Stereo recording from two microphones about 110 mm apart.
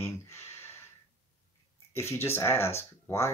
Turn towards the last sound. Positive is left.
turn(degrees=25)  # may be behind; listen again after turning